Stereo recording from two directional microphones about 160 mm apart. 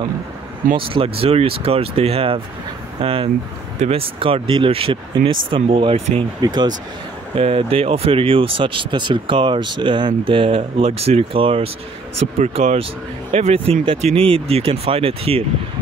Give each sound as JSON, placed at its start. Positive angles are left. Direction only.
{"t": 0.7, "sound": "speech", "side_deg": -35}